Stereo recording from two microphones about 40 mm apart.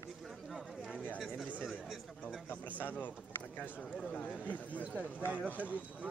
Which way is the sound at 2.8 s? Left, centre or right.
Left.